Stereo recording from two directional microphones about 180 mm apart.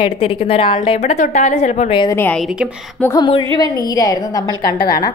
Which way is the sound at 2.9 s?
15° left (ahead or behind).